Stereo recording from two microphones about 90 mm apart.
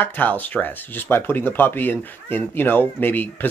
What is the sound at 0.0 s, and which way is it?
Speech, 20° left (ahead or behind).